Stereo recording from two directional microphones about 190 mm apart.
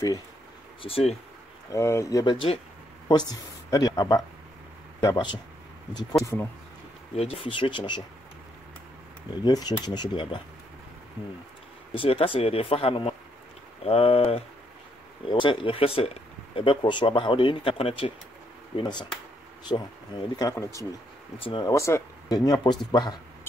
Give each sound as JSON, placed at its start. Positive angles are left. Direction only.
{"t": 0.8, "sound": "speech", "side_deg": 30}
{"t": 1.7, "sound": "speech", "side_deg": 15}
{"t": 7.2, "sound": "speech", "side_deg": 30}
{"t": 9.4, "sound": "speech", "side_deg": 20}
{"t": 11.9, "sound": "speech", "side_deg": 30}